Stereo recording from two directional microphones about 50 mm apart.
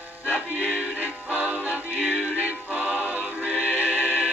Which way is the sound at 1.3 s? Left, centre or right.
Right.